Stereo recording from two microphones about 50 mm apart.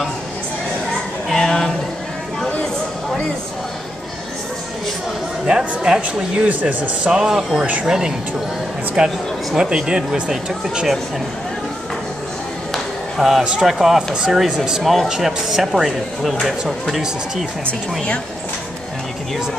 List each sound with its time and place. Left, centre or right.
1.3 s a sound: centre
5.6 s speech: centre
6.5 s speech: right
7.1 s speech: centre
13.2 s speech: centre
14.8 s speech: centre
17.6 s speech: left